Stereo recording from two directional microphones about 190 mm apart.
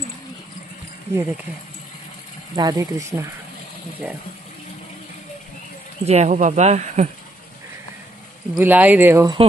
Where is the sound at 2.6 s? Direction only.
20° right (ahead or behind).